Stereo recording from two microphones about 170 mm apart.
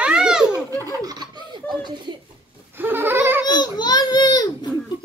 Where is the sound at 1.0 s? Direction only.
25° right (ahead or behind).